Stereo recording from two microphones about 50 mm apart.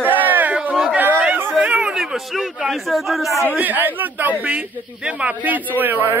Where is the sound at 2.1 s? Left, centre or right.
Centre.